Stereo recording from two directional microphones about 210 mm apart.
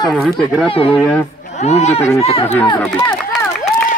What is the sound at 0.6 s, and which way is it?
Speech, 25° left (ahead or behind).